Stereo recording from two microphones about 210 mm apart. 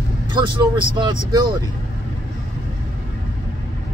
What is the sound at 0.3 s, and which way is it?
Speech, 20° right (ahead or behind).